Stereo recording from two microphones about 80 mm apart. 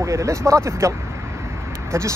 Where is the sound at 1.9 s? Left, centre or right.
Right.